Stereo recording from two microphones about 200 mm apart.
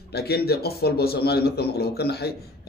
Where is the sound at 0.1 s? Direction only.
50° left (ahead or behind).